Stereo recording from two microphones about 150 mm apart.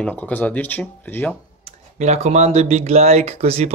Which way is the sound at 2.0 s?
50° right (ahead or behind).